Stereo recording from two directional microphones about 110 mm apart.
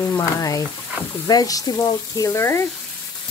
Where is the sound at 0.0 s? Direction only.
25° left (ahead or behind).